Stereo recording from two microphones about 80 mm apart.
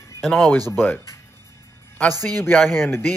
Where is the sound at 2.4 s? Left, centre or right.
Left.